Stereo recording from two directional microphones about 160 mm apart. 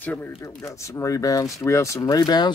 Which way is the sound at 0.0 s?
10° left (ahead or behind).